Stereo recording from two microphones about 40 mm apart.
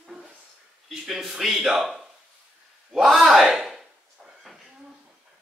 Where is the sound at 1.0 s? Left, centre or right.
Centre.